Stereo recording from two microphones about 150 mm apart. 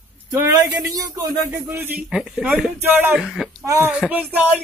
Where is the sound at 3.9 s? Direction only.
10° right (ahead or behind).